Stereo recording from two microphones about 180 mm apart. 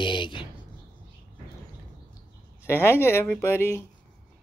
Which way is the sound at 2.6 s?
15° left (ahead or behind).